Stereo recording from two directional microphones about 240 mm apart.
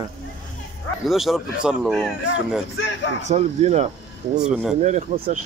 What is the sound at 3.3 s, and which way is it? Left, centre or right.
Speech, right.